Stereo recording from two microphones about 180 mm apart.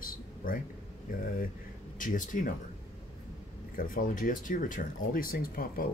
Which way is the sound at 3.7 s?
50° left (ahead or behind).